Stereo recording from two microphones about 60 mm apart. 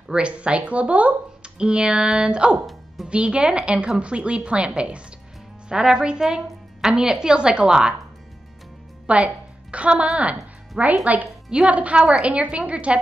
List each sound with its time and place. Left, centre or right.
0.1 s speech: centre
9.0 s a woman's voice: right